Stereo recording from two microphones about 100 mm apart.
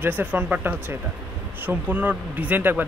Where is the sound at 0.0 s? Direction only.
20° right (ahead or behind).